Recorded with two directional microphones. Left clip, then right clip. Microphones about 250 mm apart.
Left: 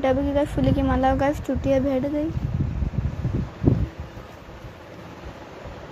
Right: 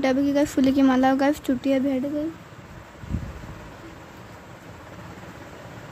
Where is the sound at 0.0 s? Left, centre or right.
Right.